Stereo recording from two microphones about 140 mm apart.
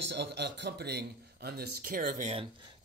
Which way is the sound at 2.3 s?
40° right (ahead or behind).